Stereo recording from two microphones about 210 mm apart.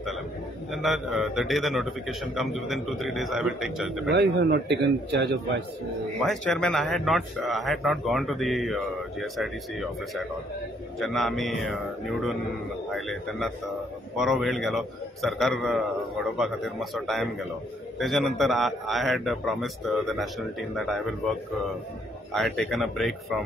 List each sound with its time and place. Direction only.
0.8 s speech: centre (ahead or behind)
4.1 s a man's voice: 55° right (ahead or behind)
6.2 s speech: 5° left (ahead or behind)
22.3 s speech: centre (ahead or behind)